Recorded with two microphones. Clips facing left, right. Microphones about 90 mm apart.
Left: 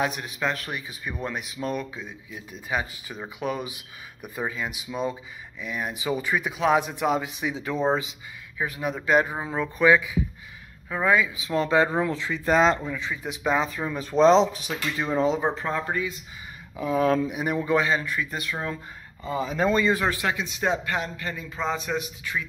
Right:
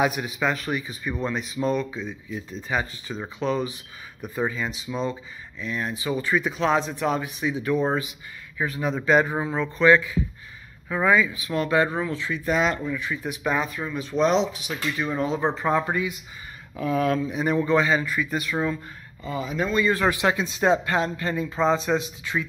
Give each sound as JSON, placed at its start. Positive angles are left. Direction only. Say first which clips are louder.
{"t": 0.0, "sound": "speech", "louder": "right 3 dB", "side_deg": -5}
{"t": 8.5, "sound": "speech", "louder": "right 2 dB", "side_deg": 10}
{"t": 10.9, "sound": "speech", "louder": "right 2 dB", "side_deg": 0}
{"t": 11.3, "sound": "speech", "louder": "left 1 dB", "side_deg": 25}
{"t": 12.4, "sound": "speech", "louder": "left 3 dB", "side_deg": 35}
{"t": 13.7, "sound": "speech", "louder": "even", "side_deg": 35}
{"t": 15.6, "sound": "a man's voice", "louder": "right 4 dB", "side_deg": -15}
{"t": 16.7, "sound": "speech", "louder": "left 1 dB", "side_deg": 25}
{"t": 17.3, "sound": "speech", "louder": "right 2 dB", "side_deg": 10}
{"t": 19.2, "sound": "speech", "louder": "left 3 dB", "side_deg": 35}
{"t": 20.2, "sound": "speech", "louder": "right 5 dB", "side_deg": -35}